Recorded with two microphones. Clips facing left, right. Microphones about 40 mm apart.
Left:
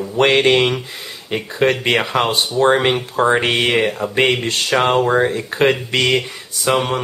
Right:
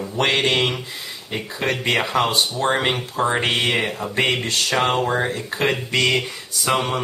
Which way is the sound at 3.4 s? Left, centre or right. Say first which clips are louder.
Left 4 dB; centre.